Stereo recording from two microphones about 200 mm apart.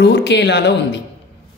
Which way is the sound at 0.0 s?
55° left (ahead or behind).